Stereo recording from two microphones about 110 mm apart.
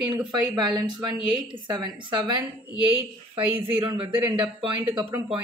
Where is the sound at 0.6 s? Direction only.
40° right (ahead or behind).